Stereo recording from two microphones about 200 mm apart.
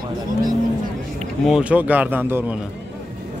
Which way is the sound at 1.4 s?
5° right (ahead or behind).